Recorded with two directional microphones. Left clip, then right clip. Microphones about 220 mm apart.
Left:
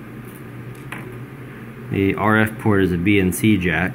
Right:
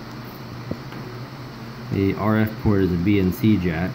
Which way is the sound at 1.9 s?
25° left (ahead or behind).